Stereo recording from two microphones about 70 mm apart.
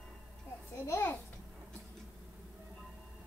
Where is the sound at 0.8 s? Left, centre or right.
Left.